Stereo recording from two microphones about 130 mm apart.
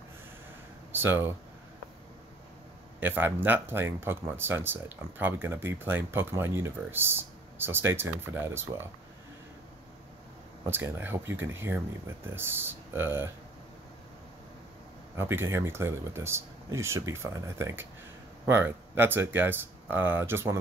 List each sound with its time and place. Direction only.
0.9 s speech: 15° right (ahead or behind)
3.0 s speech: 15° right (ahead or behind)
10.7 s speech: 15° right (ahead or behind)
15.1 s speech: 20° right (ahead or behind)